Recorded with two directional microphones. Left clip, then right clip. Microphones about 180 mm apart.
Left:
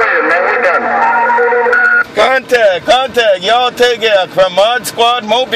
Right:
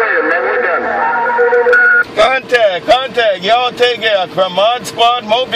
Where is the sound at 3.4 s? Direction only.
40° left (ahead or behind).